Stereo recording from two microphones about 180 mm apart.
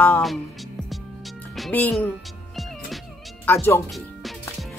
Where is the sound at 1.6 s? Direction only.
5° left (ahead or behind).